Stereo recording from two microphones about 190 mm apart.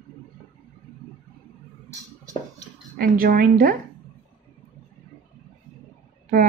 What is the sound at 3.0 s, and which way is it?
Speech, 50° right (ahead or behind).